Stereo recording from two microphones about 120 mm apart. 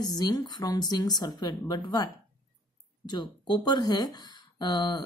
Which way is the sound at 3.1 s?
35° left (ahead or behind).